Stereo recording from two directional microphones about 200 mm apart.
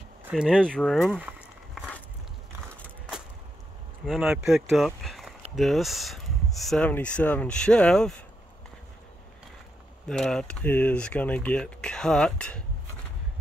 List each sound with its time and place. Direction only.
0.3 s speech: centre (ahead or behind)
4.0 s speech: centre (ahead or behind)
10.0 s speech: 5° left (ahead or behind)